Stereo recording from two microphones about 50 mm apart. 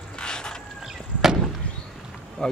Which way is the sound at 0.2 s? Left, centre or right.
Centre.